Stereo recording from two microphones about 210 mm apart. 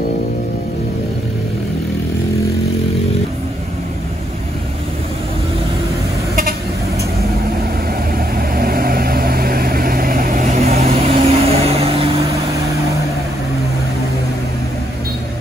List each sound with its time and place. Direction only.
8.4 s vehicle: 45° right (ahead or behind); by 12.1 s 30° right (ahead or behind)